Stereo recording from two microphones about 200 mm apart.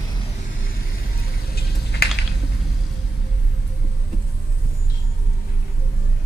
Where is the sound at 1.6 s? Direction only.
55° left (ahead or behind).